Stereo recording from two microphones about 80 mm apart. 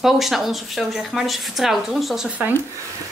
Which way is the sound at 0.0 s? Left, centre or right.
Centre.